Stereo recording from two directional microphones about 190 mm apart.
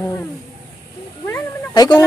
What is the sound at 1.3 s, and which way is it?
Cat, 20° left (ahead or behind).